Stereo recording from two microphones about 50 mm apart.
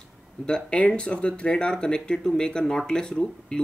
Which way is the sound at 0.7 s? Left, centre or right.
Left.